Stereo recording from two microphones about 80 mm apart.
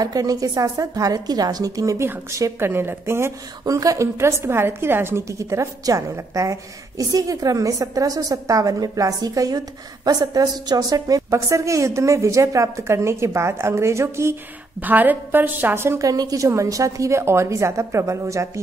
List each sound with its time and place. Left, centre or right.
0.0 s a woman's voice: right
2.0 s a woman's voice: right
3.6 s a woman's voice: right
14.3 s a woman's voice: right
16.1 s a woman's voice: right